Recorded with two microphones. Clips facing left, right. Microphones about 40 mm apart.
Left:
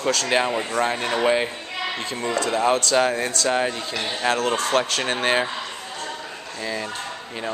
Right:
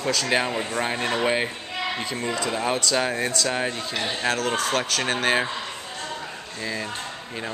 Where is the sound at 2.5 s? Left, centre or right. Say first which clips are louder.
Left 6 dB; centre.